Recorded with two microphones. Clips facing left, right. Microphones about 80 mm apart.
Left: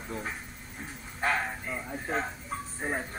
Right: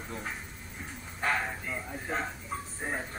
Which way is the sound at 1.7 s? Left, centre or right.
Left.